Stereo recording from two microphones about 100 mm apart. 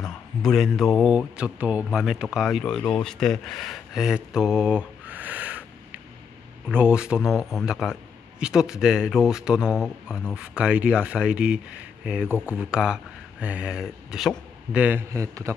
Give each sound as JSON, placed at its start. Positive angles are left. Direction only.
{"t": 0.0, "sound": "speech", "side_deg": 5}
{"t": 15.0, "sound": "a man's voice", "side_deg": -30}